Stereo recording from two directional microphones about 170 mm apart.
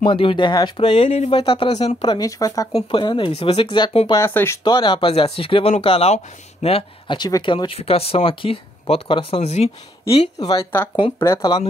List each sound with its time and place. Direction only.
0.0 s speech: 30° left (ahead or behind)
2.0 s speech: 20° left (ahead or behind)
4.1 s speech: 15° left (ahead or behind)
4.6 s speech: 30° left (ahead or behind)